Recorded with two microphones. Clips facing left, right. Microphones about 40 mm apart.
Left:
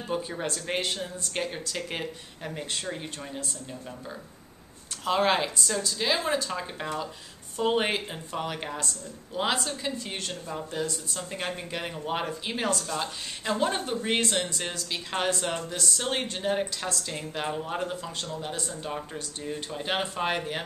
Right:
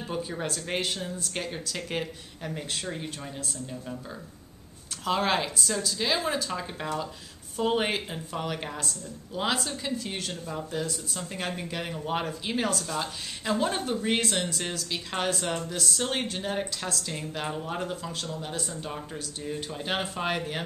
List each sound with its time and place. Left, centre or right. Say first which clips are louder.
0.1 s a woman's voice: left 2 dB; centre
5.0 s a woman's voice: left 2 dB; centre